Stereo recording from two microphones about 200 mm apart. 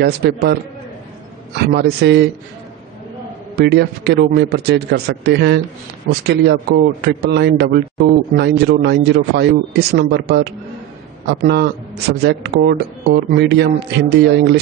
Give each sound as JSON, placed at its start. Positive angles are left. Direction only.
{"t": 0.0, "sound": "a man's voice", "side_deg": -55}
{"t": 1.7, "sound": "speech", "side_deg": -55}
{"t": 3.5, "sound": "a man's voice", "side_deg": -55}